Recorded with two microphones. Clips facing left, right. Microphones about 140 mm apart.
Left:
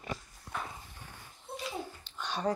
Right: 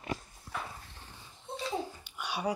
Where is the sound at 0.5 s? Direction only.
25° left (ahead or behind).